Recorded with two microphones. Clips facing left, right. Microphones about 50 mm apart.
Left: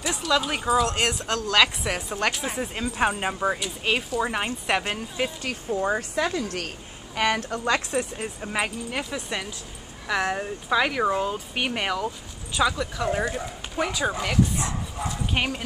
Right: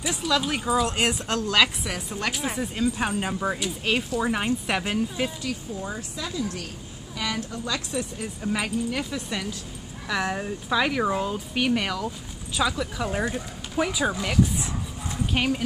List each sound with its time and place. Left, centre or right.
0.5 s speech: centre
0.8 s speech: centre
1.9 s a woman's voice: left
2.3 s speech: centre
2.6 s speech: left
5.4 s speech: left
8.4 s speech: centre
11.5 s speech: centre
12.5 s speech: centre